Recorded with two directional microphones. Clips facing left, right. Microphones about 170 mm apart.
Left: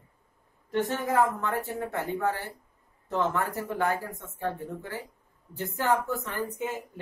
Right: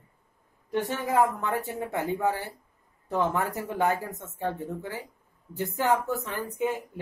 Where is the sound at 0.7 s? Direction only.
10° right (ahead or behind).